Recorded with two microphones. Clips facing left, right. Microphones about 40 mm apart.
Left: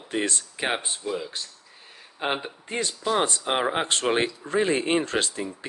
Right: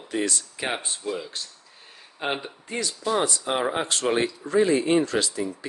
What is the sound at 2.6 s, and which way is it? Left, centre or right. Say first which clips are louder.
Speech: even; left.